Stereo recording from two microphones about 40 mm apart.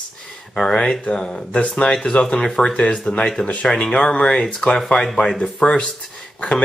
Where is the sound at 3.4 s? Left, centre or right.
Left.